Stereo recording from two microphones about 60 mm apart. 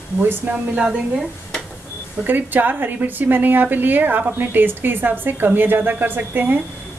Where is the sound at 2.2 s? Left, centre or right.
Right.